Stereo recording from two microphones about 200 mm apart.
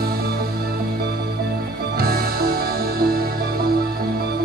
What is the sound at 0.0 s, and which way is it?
Music, 50° right (ahead or behind).